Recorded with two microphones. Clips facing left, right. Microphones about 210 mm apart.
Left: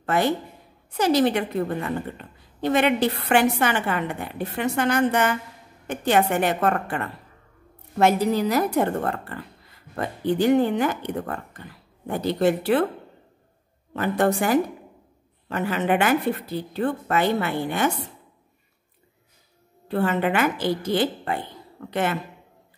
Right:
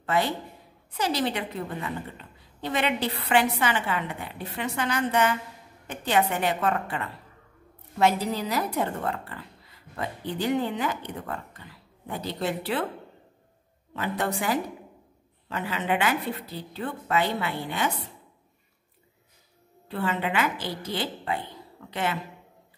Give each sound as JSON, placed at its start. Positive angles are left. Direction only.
{"t": 0.0, "sound": "a woman's voice", "side_deg": 50}
{"t": 13.9, "sound": "a woman's voice", "side_deg": 50}
{"t": 19.9, "sound": "a woman's voice", "side_deg": 50}